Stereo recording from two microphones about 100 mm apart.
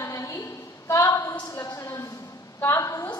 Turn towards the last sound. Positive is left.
turn(degrees=35)  # may be behind; listen again after turning